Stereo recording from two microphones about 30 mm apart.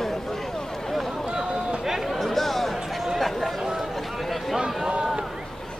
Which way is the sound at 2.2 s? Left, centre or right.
Centre.